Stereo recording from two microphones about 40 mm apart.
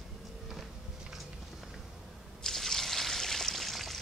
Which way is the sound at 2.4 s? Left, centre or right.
Centre.